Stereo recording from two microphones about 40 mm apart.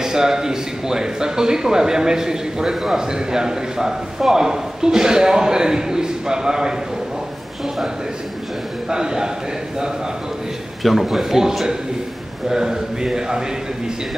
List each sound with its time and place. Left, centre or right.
0.0 s a man's voice: centre
8.9 s a man's voice: centre
10.8 s a man's voice: centre